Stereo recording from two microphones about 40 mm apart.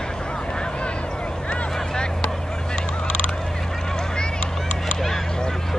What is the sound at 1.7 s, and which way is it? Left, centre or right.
Vehicle, centre.